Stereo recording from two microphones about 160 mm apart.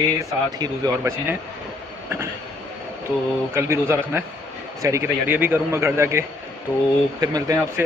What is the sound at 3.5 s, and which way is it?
A man's voice, 15° right (ahead or behind).